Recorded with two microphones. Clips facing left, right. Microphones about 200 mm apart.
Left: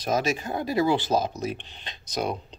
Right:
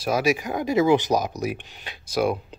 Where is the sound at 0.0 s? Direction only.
10° right (ahead or behind).